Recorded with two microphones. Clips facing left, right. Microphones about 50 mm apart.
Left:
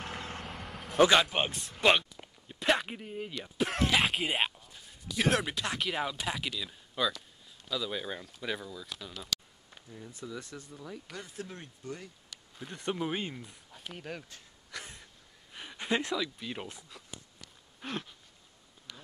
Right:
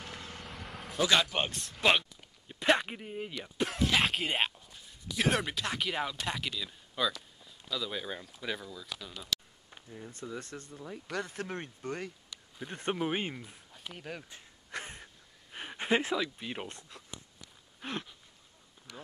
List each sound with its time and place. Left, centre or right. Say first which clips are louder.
0.0 s vehicle: left 5 dB; left
0.4 s vehicle: left 2 dB; centre
1.1 s speech: left 2 dB; centre
3.9 s speech: left 1 dB; centre
9.8 s speech: right 1 dB; centre
10.4 s speech: right 1 dB; right
12.6 s speech: right 1 dB; right
13.7 s speech: left 1 dB; centre
14.7 s a sound: right 3 dB; right
15.5 s speech: right 2 dB; right
17.8 s speech: even; centre